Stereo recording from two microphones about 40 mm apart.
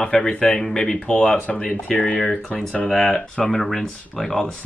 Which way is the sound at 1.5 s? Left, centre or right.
Centre.